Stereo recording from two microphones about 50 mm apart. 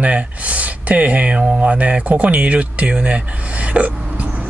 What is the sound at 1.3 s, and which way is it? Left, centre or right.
Speech, right.